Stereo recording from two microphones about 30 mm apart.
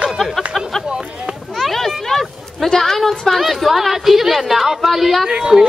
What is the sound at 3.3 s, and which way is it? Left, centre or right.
A woman's voice, centre.